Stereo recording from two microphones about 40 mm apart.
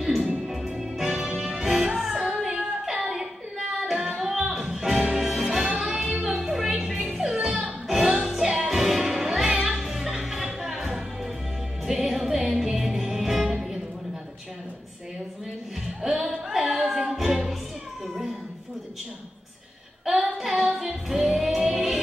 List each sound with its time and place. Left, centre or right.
0.0 s music: centre
8.4 s music: centre
16.1 s music: centre
20.1 s music: centre